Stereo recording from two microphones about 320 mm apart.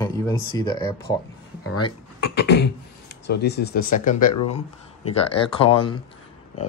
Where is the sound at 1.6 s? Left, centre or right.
Left.